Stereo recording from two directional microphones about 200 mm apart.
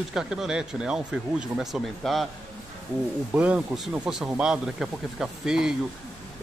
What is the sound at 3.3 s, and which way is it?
Speech, 5° right (ahead or behind).